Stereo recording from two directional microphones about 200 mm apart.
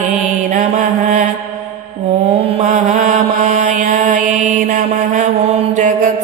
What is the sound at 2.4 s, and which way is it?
Mantra, 35° right (ahead or behind).